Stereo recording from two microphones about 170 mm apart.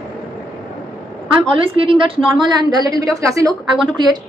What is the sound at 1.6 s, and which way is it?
A woman's voice, 30° right (ahead or behind).